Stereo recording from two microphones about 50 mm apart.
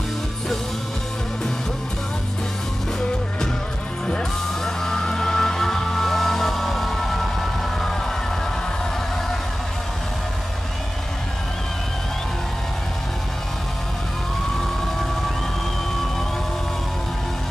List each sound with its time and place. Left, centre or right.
4.1 s music: centre